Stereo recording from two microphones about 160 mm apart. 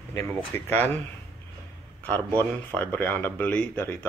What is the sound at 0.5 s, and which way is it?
Speech, 15° left (ahead or behind).